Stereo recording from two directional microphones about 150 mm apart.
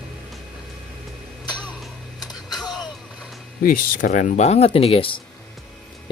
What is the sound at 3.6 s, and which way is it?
Speech, 65° left (ahead or behind).